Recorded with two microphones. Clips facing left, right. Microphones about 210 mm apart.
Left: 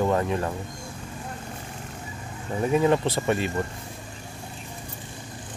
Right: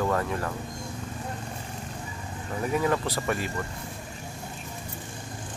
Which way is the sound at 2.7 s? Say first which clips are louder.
Left 5 dB; 25° left (ahead or behind).